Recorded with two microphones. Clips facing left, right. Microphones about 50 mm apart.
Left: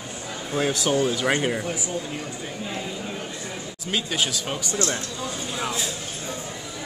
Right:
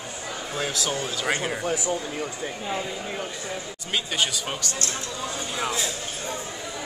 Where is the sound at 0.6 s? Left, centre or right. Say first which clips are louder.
Left 7 dB; left.